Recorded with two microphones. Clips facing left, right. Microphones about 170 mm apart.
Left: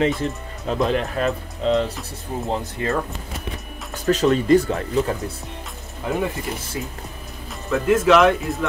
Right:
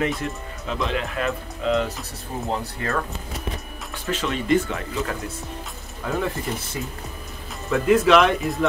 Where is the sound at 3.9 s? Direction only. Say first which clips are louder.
Left 9 dB; 40° left (ahead or behind).